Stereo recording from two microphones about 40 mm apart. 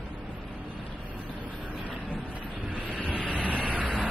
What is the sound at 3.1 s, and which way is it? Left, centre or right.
Vehicle, left.